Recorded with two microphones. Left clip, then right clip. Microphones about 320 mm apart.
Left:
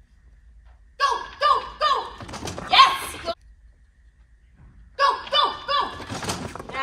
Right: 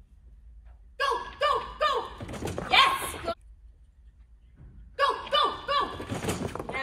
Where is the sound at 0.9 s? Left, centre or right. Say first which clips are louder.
Left 5 dB; centre.